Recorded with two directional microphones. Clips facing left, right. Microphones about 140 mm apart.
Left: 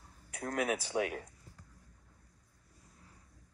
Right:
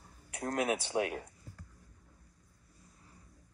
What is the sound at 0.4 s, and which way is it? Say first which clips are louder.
Speech: right 1 dB; 20° right (ahead or behind).